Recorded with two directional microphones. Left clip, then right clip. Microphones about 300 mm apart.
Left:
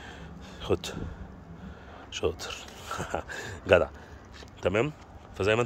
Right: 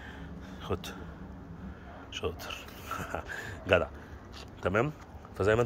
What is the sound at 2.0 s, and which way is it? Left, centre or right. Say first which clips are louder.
Speech: left 5 dB; left.